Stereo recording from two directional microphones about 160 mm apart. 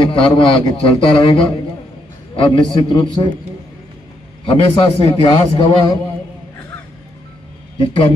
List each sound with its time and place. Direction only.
0.0 s a man's voice: 30° left (ahead or behind)
2.4 s a man's voice: 30° left (ahead or behind)
4.5 s a man's voice: 35° left (ahead or behind)
7.8 s a man's voice: 35° left (ahead or behind)